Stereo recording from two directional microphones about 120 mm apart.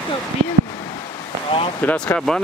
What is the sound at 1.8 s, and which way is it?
Speech, 15° left (ahead or behind).